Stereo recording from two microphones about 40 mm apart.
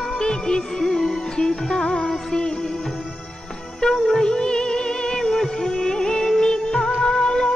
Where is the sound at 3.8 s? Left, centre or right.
Centre.